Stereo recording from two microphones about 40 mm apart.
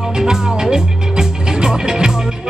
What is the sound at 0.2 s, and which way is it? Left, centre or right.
Music, centre.